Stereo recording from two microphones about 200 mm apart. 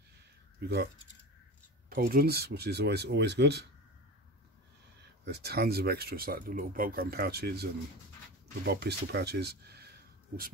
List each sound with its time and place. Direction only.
0.6 s speech: 55° right (ahead or behind)
1.9 s speech: 45° right (ahead or behind)
5.2 s speech: 55° right (ahead or behind)
8.6 s speech: 55° right (ahead or behind)